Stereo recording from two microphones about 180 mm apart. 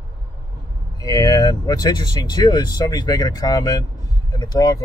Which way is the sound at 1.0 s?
20° left (ahead or behind).